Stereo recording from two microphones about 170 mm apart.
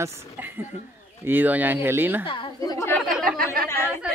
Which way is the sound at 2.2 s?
30° left (ahead or behind).